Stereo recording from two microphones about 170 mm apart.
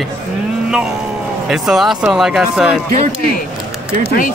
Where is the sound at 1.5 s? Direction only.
Centre (ahead or behind).